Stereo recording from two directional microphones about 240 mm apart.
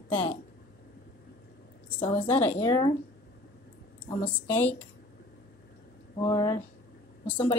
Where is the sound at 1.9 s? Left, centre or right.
Left.